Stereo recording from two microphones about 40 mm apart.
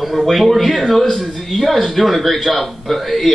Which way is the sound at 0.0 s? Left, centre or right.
Centre.